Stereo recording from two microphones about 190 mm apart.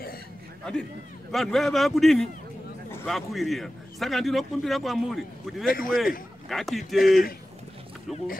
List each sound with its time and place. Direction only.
1.3 s a man's voice: centre (ahead or behind)
5.7 s a man's voice: 50° left (ahead or behind)
6.5 s a man's voice: centre (ahead or behind)